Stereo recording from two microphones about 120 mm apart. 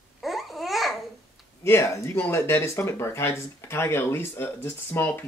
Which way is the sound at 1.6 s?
20° left (ahead or behind).